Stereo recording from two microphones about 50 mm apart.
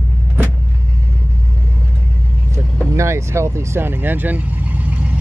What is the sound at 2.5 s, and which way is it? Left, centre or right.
Vehicle, right.